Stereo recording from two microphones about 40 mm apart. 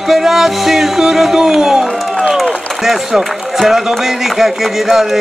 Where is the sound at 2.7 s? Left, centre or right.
Centre.